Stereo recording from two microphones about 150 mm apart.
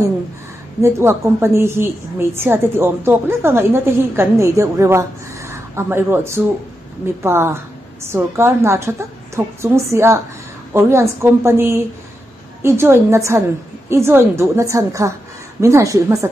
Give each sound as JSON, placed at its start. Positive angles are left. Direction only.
{"t": 0.8, "sound": "a woman's voice", "side_deg": -20}